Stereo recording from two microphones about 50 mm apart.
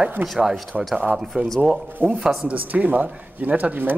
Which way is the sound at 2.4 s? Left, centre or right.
Right.